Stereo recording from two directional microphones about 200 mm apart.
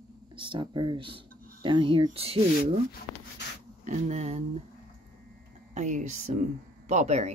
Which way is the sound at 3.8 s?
35° right (ahead or behind).